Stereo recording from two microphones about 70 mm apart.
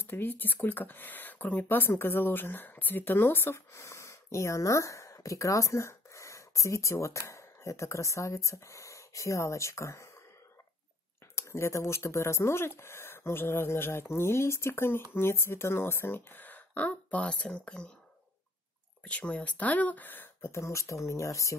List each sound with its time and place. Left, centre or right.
0.1 s speech: left
11.3 s speech: left; by 17.9 s centre
19.0 s speech: centre
20.5 s speech: left